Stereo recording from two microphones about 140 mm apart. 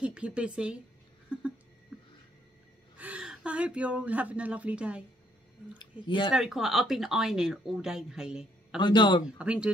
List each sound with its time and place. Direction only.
0.0 s a woman's voice: 5° right (ahead or behind)
3.0 s a woman's voice: 10° right (ahead or behind)
5.8 s speech: 35° left (ahead or behind)
6.3 s speech: centre (ahead or behind)
8.7 s speech: 30° left (ahead or behind)
9.2 s a woman's voice: 5° right (ahead or behind)